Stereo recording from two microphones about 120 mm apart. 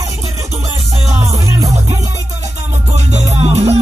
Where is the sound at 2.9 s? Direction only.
65° right (ahead or behind).